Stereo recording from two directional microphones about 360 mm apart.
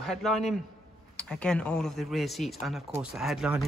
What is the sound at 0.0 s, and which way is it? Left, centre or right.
Speech, centre.